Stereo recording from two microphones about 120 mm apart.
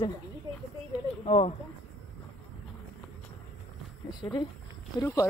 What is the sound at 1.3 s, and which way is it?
Speech, 60° left (ahead or behind).